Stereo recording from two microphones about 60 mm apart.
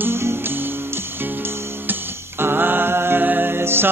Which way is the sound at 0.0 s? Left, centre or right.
Right.